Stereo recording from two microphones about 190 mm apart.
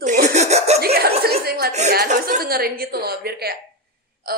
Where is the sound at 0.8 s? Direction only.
55° right (ahead or behind).